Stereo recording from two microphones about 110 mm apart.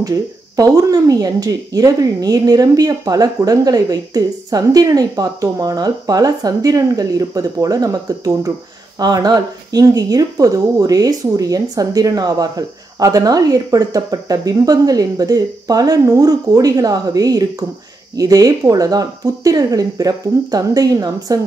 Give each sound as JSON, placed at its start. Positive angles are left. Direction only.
{"t": 0.0, "sound": "speech", "side_deg": -35}